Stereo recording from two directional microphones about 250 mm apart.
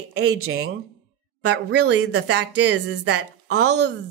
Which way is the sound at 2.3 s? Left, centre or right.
Right.